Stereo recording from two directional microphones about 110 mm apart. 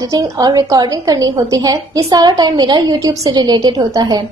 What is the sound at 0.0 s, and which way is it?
A woman's voice, 35° right (ahead or behind).